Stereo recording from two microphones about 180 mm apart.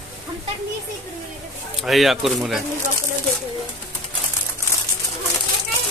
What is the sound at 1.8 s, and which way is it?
Speech, centre (ahead or behind).